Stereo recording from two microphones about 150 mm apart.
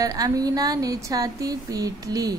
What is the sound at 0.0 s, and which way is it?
A woman's voice, 25° right (ahead or behind).